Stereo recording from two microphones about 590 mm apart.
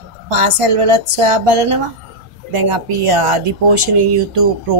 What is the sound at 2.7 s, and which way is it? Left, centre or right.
A woman's voice, right.